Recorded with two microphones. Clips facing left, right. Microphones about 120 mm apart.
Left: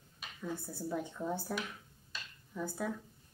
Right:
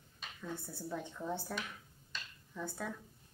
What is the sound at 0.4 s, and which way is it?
A woman's voice, 10° left (ahead or behind).